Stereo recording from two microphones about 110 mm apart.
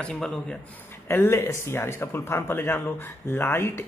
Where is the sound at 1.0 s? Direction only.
20° left (ahead or behind).